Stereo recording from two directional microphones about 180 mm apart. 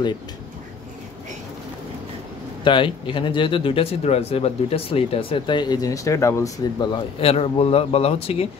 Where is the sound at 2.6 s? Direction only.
30° left (ahead or behind).